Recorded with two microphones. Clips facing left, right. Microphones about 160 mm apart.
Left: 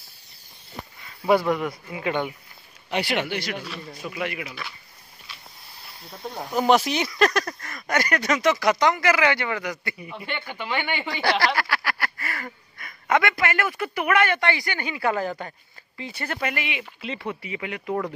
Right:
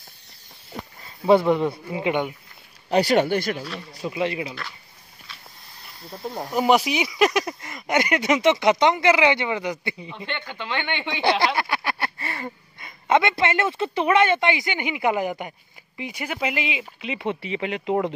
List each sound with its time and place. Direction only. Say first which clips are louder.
1.0 s speech: right 3 dB; 25° right (ahead or behind)
2.9 s speech: right 7 dB; 40° right (ahead or behind)
4.0 s speech: right 6 dB; 30° right (ahead or behind)
6.0 s speech: right 3 dB; centre (ahead or behind); by 10.2 s 20° right (ahead or behind)
10.2 s speech: even; 10° left (ahead or behind)
11.2 s a sound: right 2 dB; 20° right (ahead or behind)
16.0 s speech: right 2 dB; 10° right (ahead or behind)